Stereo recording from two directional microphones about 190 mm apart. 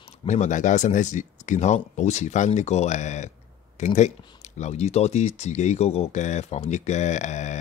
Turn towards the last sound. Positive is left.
turn(degrees=40)  # may be behind; listen again after turning